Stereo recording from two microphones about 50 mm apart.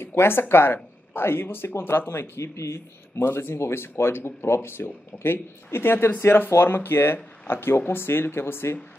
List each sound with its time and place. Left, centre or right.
0.0 s speech: left
3.3 s speech: left